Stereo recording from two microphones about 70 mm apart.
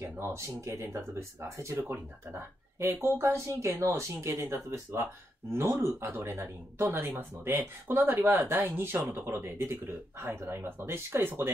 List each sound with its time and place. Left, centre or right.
0.0 s speech: right
1.8 s speech: right
3.2 s speech: right